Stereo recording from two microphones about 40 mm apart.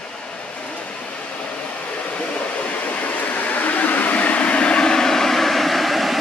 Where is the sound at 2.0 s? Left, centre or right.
Left.